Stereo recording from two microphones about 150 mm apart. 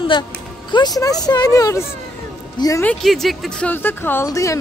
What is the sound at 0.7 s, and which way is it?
A woman's voice, 30° left (ahead or behind).